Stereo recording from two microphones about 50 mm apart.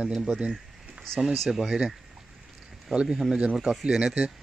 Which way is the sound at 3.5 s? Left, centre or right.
Centre.